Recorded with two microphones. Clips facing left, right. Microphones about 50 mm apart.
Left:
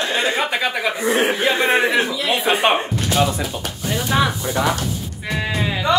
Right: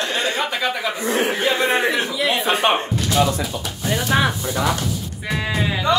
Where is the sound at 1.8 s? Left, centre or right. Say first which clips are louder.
Left 2 dB; centre.